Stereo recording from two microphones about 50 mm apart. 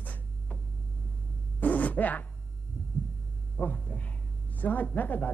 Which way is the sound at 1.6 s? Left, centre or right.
Left.